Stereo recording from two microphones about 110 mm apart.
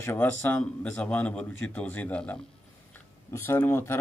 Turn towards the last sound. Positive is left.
turn(degrees=20)  # may be behind; listen again after turning